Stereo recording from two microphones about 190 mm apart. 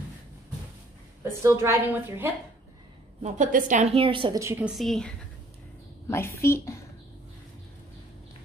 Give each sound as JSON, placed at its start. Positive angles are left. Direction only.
{"t": 1.4, "sound": "a woman's voice", "side_deg": -15}
{"t": 3.2, "sound": "a woman's voice", "side_deg": -40}
{"t": 3.9, "sound": "a woman's voice", "side_deg": -30}
{"t": 4.4, "sound": "a woman's voice", "side_deg": -10}
{"t": 6.0, "sound": "a woman's voice", "side_deg": 15}